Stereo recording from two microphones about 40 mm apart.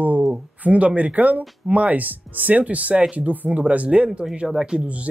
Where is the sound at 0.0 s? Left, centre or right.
Right.